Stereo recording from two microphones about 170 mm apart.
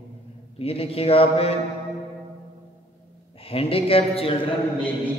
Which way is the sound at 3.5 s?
35° left (ahead or behind).